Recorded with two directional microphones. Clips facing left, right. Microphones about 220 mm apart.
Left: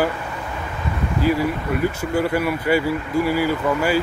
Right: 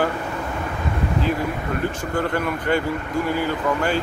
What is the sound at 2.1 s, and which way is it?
Speech, 10° left (ahead or behind).